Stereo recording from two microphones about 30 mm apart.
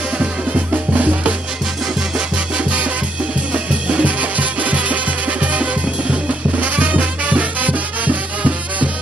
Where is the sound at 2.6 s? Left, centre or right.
Right.